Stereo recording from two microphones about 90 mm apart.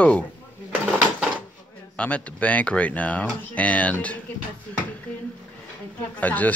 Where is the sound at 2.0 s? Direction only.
15° left (ahead or behind).